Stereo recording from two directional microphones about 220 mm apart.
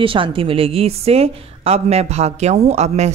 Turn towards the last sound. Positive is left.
turn(degrees=-30)  # may be behind; listen again after turning